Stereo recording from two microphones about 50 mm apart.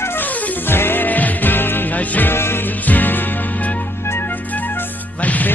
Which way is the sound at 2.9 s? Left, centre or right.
Left.